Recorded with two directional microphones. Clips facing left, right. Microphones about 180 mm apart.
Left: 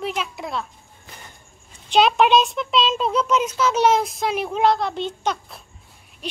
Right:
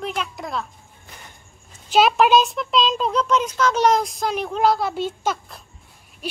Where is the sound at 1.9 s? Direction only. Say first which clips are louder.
Even; 5° right (ahead or behind).